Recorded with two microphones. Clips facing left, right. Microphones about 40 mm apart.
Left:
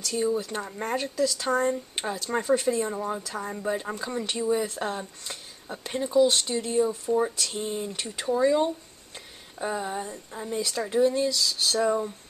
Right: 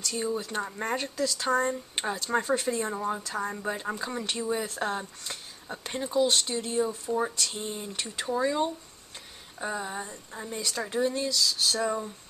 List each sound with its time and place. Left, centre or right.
0.0 s speech: centre
11.2 s a sound: centre
11.8 s speech: centre